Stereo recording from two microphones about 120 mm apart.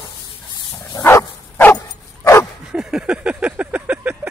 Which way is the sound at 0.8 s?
25° left (ahead or behind).